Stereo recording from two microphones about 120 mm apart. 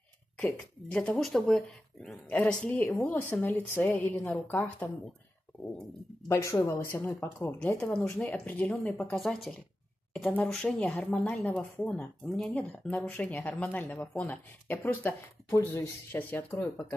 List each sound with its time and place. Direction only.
0.4 s speech: 10° left (ahead or behind)
2.2 s speech: 10° left (ahead or behind)
6.2 s speech: 25° left (ahead or behind)